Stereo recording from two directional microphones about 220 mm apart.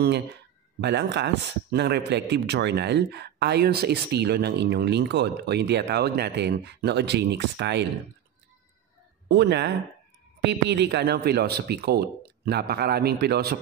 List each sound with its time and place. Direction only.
0.7 s speech: 50° right (ahead or behind)
9.3 s speech: 50° right (ahead or behind)